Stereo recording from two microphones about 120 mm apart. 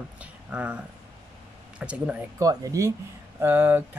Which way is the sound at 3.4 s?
15° right (ahead or behind).